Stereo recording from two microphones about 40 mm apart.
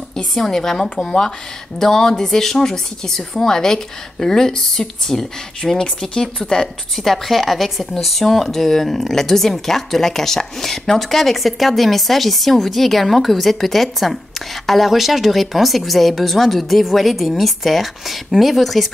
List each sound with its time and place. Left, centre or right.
0.3 s speech: centre
7.1 s speech: centre